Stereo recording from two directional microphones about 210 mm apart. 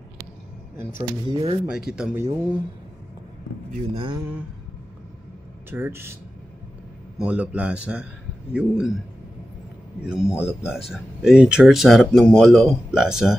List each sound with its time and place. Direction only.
1.2 s speech: 25° right (ahead or behind)
1.7 s speech: 5° right (ahead or behind)
3.9 s speech: 25° right (ahead or behind)
5.7 s a man's voice: 10° right (ahead or behind)
7.2 s speech: 5° right (ahead or behind)
10.0 s speech: 5° right (ahead or behind)